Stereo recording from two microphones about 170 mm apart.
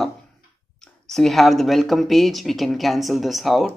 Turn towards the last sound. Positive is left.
turn(degrees=0)  # may be behind; listen again after turning